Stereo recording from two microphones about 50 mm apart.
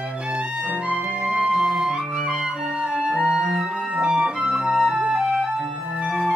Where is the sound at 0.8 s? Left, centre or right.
Centre.